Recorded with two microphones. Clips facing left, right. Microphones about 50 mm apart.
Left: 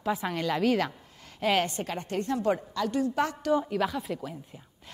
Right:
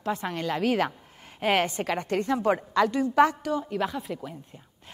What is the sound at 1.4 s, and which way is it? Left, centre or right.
A woman's voice, right.